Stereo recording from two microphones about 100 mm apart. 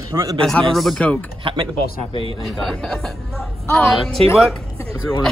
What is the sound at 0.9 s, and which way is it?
Speech, 15° left (ahead or behind).